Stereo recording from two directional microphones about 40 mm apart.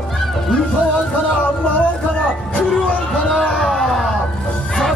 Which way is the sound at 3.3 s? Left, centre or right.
Centre.